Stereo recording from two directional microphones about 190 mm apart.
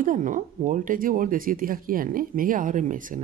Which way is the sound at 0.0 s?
45° right (ahead or behind).